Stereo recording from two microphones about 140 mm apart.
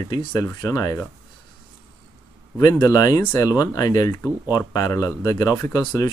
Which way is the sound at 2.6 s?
25° left (ahead or behind).